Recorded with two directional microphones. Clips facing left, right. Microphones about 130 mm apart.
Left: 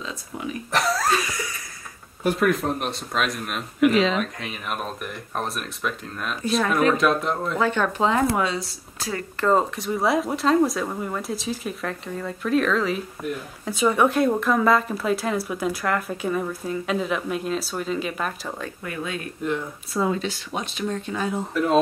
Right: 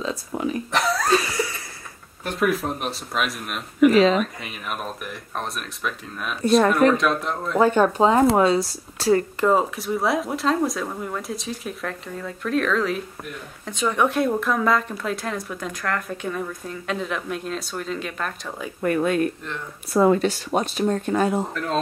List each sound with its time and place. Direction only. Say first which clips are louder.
0.3 s speech: right 6 dB; 40° right (ahead or behind)
0.7 s speech: left 3 dB; centre (ahead or behind)
2.2 s speech: left 2 dB; centre (ahead or behind)
3.9 s speech: right 4 dB; 40° right (ahead or behind)
4.2 s speech: right 1 dB; centre (ahead or behind)
7.5 s speech: right 8 dB; 40° right (ahead or behind)
9.4 s speech: right 1 dB; 5° right (ahead or behind)
18.8 s speech: right 10 dB; 50° right (ahead or behind)